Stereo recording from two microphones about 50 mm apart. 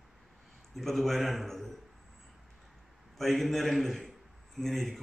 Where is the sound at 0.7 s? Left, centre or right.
Centre.